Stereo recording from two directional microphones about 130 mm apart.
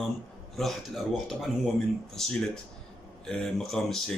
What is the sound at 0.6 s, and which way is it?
Speech, centre (ahead or behind).